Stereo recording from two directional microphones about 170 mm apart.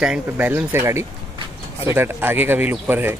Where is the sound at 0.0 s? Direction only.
5° right (ahead or behind).